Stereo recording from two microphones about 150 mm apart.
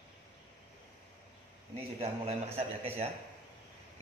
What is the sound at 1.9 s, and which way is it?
Speech, 40° right (ahead or behind).